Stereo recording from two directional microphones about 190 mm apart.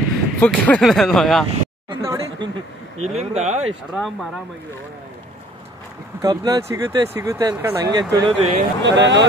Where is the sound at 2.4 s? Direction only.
25° right (ahead or behind).